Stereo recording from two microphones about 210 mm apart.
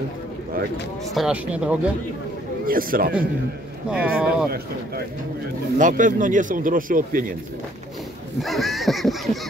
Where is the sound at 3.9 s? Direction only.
5° right (ahead or behind).